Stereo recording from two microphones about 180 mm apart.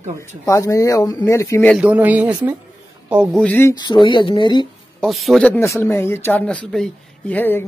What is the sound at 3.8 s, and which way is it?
Speech, 25° left (ahead or behind).